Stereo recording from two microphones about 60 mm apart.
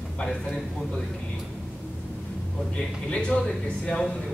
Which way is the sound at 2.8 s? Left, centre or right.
Centre.